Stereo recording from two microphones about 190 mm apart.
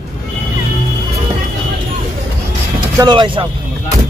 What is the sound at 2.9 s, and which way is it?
Speech, 25° right (ahead or behind).